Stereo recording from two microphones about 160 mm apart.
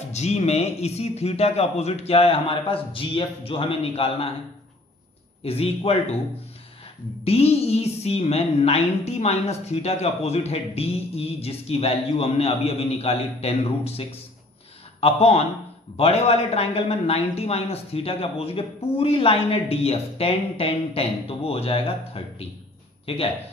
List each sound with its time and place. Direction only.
0.1 s a woman's voice: 45° left (ahead or behind)
5.4 s a woman's voice: 40° left (ahead or behind)
7.2 s a woman's voice: 40° left (ahead or behind)